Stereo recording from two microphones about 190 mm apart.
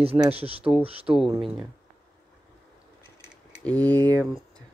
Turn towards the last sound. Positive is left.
turn(degrees=10)  # may be behind; listen again after turning